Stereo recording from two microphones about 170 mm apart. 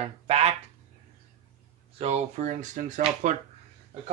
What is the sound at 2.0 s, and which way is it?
Speech, 40° right (ahead or behind).